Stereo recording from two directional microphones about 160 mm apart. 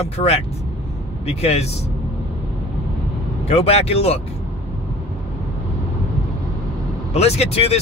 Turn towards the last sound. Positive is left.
turn(degrees=40)  # may be behind; listen again after turning